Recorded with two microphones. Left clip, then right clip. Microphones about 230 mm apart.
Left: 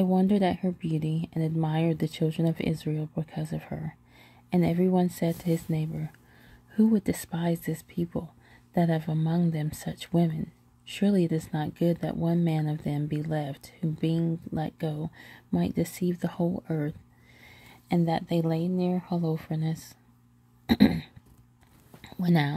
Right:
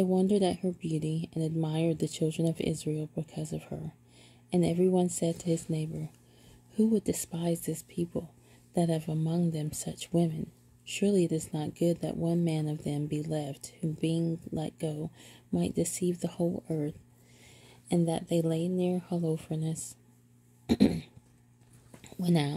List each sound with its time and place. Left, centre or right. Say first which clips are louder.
0.0 s speech: left 1 dB; left
16.3 s speech: left 1 dB; left
16.6 s speech: left 2 dB; left
18.6 s speech: left 1 dB; left
18.9 s speech: left 2 dB; centre
20.6 s a sound: left 3 dB; centre
22.2 s speech: left 3 dB; left